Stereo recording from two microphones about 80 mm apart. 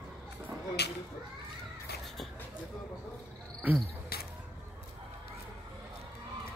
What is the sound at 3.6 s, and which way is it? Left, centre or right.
Cricket, right.